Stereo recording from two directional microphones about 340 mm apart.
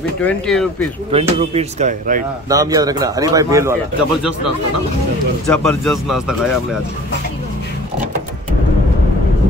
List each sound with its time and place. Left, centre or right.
0.2 s speech: centre
1.1 s speech: centre
2.5 s a man's voice: centre
5.5 s speech: centre